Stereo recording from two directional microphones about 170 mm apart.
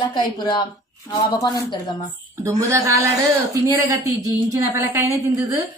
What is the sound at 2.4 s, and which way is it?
A woman's voice, 15° right (ahead or behind).